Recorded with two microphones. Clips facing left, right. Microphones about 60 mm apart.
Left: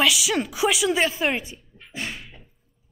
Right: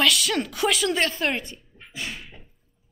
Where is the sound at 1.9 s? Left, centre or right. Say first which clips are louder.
Left 2 dB; left.